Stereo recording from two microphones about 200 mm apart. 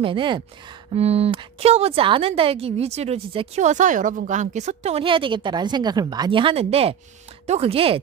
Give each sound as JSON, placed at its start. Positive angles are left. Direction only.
{"t": 0.0, "sound": "a woman's voice", "side_deg": -25}